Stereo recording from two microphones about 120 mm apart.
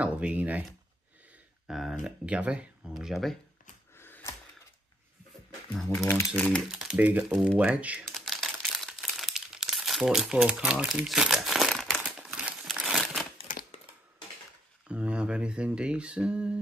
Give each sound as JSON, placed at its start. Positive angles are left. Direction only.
{"t": 0.0, "sound": "speech", "side_deg": -10}
{"t": 1.7, "sound": "speech", "side_deg": 0}
{"t": 3.9, "sound": "a sound", "side_deg": 20}
{"t": 5.7, "sound": "speech", "side_deg": 5}
{"t": 6.0, "sound": "speech", "side_deg": 15}
{"t": 6.8, "sound": "speech", "side_deg": -10}
{"t": 8.1, "sound": "crumpling", "side_deg": 0}
{"t": 14.9, "sound": "speech", "side_deg": -10}